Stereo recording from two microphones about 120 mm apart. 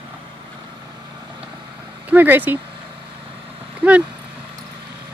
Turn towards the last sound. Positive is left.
turn(degrees=-10)  # may be behind; listen again after turning